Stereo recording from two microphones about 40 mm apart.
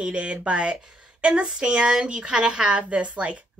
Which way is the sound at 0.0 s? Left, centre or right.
Right.